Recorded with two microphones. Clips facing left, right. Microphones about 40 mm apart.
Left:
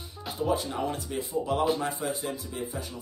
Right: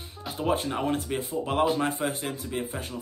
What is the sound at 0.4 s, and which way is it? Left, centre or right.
Speech, right.